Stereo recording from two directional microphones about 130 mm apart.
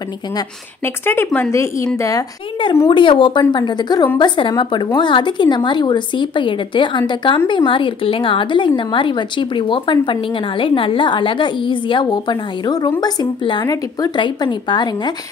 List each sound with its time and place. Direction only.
0.8 s speech: 20° left (ahead or behind)
2.9 s speech: 40° left (ahead or behind)